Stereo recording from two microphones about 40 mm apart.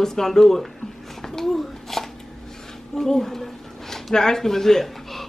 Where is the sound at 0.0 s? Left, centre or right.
Centre.